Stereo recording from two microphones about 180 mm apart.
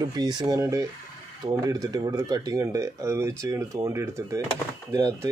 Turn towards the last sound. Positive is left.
turn(degrees=-15)  # may be behind; listen again after turning